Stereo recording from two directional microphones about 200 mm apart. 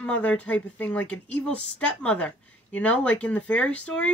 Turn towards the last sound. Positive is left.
turn(degrees=5)  # may be behind; listen again after turning